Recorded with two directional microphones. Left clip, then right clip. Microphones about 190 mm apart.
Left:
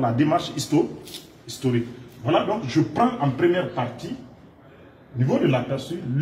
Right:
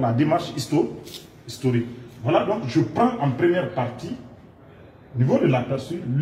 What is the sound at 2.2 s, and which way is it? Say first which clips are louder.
A man's voice: right 1 dB; 10° right (ahead or behind).